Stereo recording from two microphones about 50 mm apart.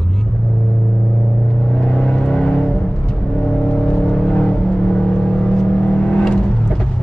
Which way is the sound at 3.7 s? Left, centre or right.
Left.